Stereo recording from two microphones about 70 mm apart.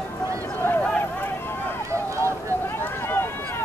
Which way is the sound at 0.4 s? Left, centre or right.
Left.